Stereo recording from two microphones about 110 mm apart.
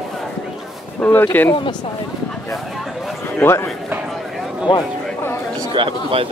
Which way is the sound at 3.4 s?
20° left (ahead or behind).